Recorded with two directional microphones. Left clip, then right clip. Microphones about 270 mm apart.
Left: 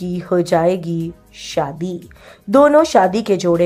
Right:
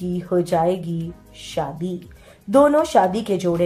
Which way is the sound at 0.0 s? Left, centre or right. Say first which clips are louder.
Left 4 dB; left.